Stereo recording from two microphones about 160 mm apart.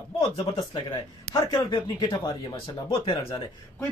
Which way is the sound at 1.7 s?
30° left (ahead or behind).